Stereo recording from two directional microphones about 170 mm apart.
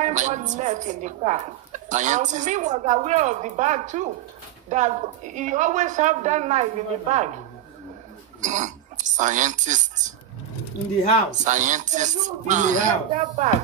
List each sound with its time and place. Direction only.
0.0 s a woman's voice: 45° right (ahead or behind)
8.4 s speech: 45° right (ahead or behind)
11.4 s a woman's voice: 45° right (ahead or behind)